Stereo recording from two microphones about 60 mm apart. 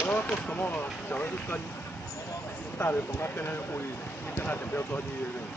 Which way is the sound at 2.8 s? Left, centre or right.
Left.